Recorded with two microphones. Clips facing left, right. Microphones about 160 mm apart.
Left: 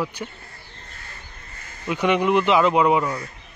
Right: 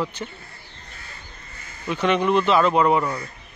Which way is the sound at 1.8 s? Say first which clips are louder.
Left 1 dB; 15° left (ahead or behind).